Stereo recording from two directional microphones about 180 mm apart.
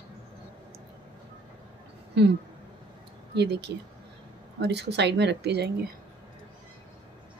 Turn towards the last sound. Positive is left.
turn(degrees=-65)  # may be behind; listen again after turning